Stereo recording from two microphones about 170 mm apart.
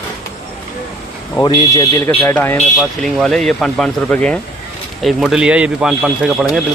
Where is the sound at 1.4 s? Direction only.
30° left (ahead or behind).